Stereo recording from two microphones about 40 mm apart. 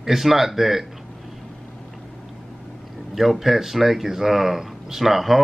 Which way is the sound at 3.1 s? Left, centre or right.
Centre.